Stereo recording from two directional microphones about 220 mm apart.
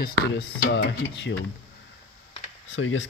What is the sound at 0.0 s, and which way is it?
Speech, 45° left (ahead or behind).